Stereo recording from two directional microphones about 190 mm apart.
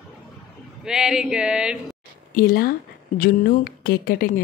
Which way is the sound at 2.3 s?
50° left (ahead or behind).